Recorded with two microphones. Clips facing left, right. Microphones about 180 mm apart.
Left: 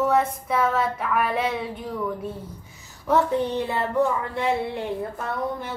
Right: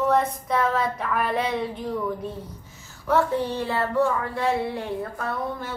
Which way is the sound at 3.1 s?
20° left (ahead or behind).